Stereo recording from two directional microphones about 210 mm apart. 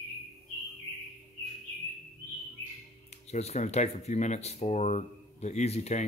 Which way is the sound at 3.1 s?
30° left (ahead or behind).